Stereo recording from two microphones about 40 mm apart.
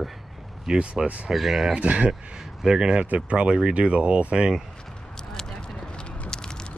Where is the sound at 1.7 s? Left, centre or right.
Right.